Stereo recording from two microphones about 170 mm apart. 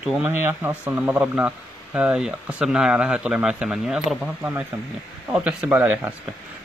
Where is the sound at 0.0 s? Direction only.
10° right (ahead or behind).